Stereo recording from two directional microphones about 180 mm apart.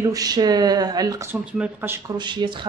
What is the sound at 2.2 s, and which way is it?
Speech, 25° right (ahead or behind).